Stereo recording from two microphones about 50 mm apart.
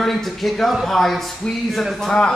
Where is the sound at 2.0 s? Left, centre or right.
Centre.